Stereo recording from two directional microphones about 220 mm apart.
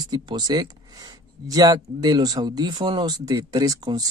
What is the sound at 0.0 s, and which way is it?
Speech, 20° right (ahead or behind).